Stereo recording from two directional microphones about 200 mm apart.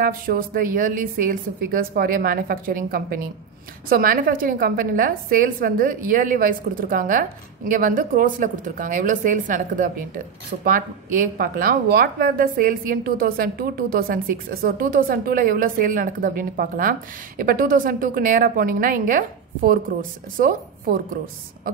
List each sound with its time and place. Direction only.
0.0 s a woman's voice: 45° right (ahead or behind)